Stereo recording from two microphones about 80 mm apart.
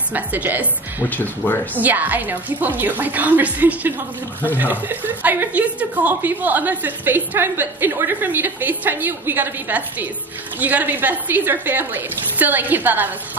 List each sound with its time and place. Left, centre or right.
0.1 s a woman's voice: right
1.1 s speech: left
1.8 s a woman's voice: right